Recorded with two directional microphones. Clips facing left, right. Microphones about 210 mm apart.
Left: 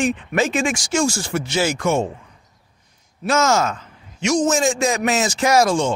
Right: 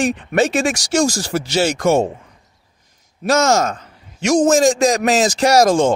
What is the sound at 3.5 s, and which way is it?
Speech, 40° right (ahead or behind).